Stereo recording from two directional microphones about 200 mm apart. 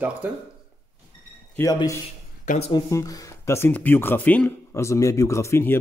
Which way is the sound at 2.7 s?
15° left (ahead or behind).